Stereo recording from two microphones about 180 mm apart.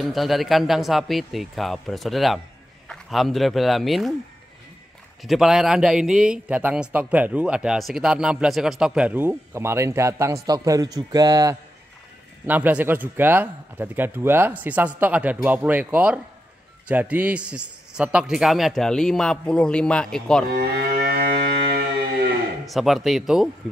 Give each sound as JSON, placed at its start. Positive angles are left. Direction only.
{"t": 0.0, "sound": "a man's voice", "side_deg": 0}
{"t": 5.2, "sound": "a man's voice", "side_deg": 0}
{"t": 12.4, "sound": "a man's voice", "side_deg": -10}
{"t": 20.4, "sound": "livestock", "side_deg": -60}
{"t": 22.7, "sound": "a man's voice", "side_deg": 0}